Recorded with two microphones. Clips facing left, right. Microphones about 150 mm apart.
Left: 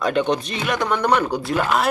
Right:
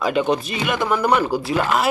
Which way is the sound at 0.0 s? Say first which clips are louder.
Right 1 dB; 5° right (ahead or behind).